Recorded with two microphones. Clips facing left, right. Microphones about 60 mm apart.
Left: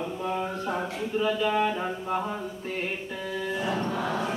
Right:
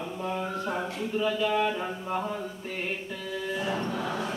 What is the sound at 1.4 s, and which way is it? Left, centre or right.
Mantra, centre.